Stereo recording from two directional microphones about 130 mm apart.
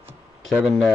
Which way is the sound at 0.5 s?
5° right (ahead or behind).